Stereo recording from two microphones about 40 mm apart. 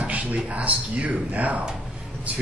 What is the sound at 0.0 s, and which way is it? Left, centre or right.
A man's voice, right.